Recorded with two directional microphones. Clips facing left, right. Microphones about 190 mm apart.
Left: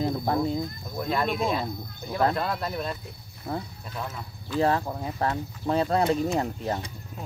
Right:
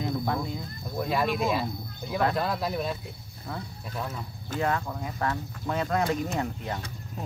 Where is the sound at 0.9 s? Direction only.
5° right (ahead or behind).